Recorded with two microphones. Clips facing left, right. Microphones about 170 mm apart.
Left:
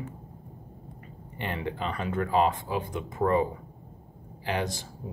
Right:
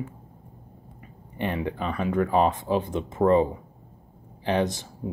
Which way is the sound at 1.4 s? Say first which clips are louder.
Right 4 dB; 10° right (ahead or behind).